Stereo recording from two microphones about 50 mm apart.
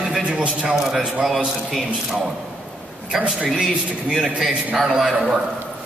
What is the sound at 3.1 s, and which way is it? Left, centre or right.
Speech, right.